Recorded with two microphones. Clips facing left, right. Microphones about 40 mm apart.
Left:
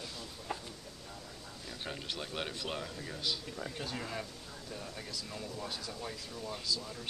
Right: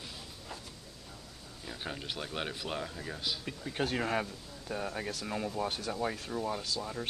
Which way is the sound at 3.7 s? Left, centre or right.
Right.